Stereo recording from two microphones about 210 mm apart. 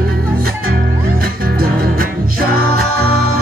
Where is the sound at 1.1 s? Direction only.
45° right (ahead or behind).